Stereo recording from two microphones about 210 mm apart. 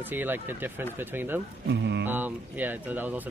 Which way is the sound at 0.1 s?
10° right (ahead or behind).